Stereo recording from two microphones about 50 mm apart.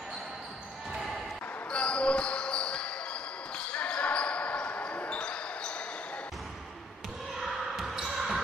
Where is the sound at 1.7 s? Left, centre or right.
Left.